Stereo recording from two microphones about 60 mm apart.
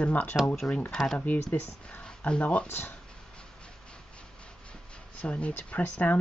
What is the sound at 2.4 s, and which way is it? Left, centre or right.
Speech, left.